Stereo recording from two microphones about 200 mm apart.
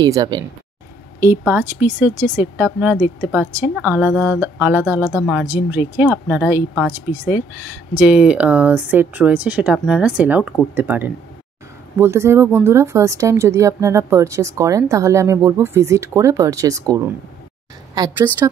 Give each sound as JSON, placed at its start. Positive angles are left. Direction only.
{"t": 0.0, "sound": "a woman's voice", "side_deg": -20}
{"t": 1.2, "sound": "a woman's voice", "side_deg": -10}